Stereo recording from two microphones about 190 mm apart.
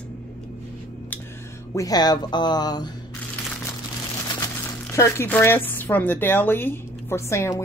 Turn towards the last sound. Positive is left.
turn(degrees=15)  # may be behind; listen again after turning